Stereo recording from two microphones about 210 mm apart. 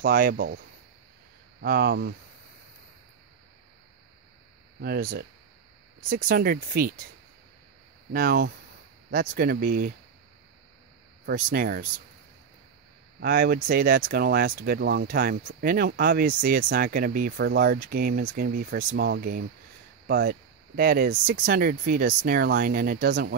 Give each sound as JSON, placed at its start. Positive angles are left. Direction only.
{"t": 0.0, "sound": "speech", "side_deg": -40}
{"t": 1.6, "sound": "speech", "side_deg": -45}
{"t": 4.7, "sound": "speech", "side_deg": -45}
{"t": 8.1, "sound": "speech", "side_deg": -45}
{"t": 11.2, "sound": "speech", "side_deg": -45}
{"t": 13.2, "sound": "speech", "side_deg": -45}